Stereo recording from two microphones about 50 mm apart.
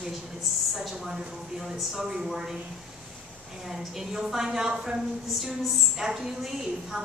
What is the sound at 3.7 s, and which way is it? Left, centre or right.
A woman's voice, centre.